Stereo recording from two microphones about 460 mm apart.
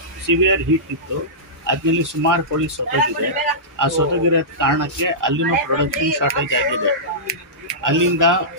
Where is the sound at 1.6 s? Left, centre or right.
Right.